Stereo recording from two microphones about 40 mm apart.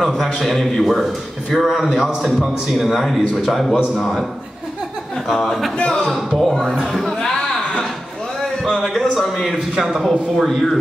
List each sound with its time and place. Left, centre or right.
0.4 s a man's voice: centre
5.3 s a man's voice: centre
5.9 s a man's voice: centre
6.1 s a man's voice: centre
8.7 s a sound: centre
9.3 s a man's voice: centre
10.3 s a man's voice: centre